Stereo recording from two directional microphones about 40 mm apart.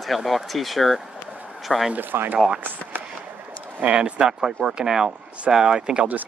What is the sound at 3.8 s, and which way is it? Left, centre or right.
Speech, right.